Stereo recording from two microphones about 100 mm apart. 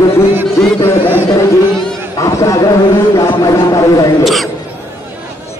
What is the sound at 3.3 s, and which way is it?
Speech, 35° left (ahead or behind).